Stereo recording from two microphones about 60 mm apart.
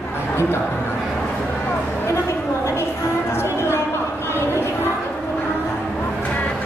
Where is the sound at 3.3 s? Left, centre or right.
Left.